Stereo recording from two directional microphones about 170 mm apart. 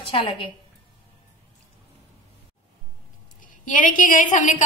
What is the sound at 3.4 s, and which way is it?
A woman's voice, 50° left (ahead or behind).